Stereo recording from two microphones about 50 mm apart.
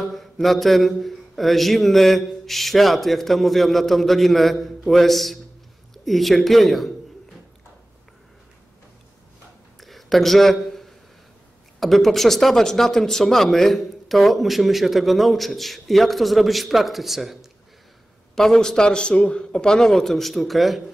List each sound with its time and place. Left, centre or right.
0.0 s speech: centre
9.8 s a sound: centre
11.8 s speech: centre
18.3 s a man's voice: centre